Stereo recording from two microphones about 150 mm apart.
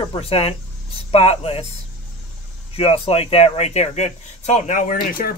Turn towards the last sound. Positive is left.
turn(degrees=70)  # may be behind; listen again after turning